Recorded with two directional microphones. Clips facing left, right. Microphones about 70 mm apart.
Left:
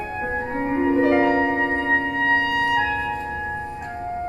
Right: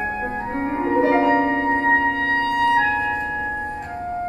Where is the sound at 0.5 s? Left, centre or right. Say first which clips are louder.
Even; right.